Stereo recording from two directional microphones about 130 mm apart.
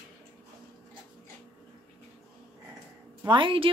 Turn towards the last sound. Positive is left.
turn(degrees=-40)  # may be behind; listen again after turning